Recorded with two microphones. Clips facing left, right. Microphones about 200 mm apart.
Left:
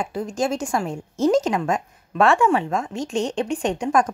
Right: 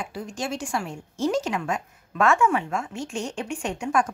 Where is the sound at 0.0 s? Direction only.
40° left (ahead or behind).